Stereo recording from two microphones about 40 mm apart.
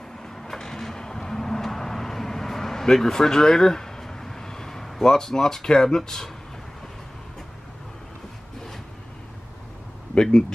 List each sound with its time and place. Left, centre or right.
0.4 s vehicle: centre
5.1 s speech: centre
10.1 s speech: centre